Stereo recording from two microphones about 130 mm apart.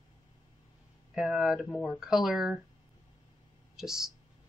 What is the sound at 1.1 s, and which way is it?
Speech, 5° right (ahead or behind).